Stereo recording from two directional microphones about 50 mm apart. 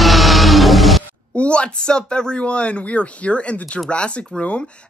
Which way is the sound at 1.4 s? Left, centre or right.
Left.